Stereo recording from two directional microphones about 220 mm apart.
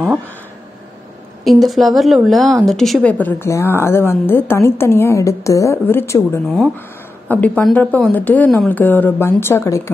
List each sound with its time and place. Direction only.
1.4 s a woman's voice: centre (ahead or behind)
6.4 s a woman's voice: centre (ahead or behind)